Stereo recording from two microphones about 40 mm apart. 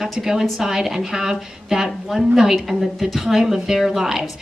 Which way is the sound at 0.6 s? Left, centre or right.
Centre.